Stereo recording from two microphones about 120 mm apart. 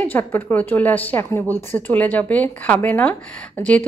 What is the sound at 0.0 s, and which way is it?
Speech, 15° left (ahead or behind).